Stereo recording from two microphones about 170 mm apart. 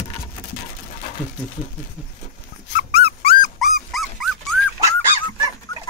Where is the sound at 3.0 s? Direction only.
65° left (ahead or behind).